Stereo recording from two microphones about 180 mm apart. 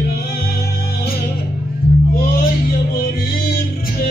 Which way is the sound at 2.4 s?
55° left (ahead or behind).